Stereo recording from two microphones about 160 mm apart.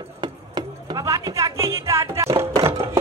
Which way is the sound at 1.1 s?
20° right (ahead or behind).